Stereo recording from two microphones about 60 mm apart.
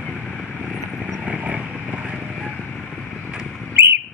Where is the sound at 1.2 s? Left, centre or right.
Right.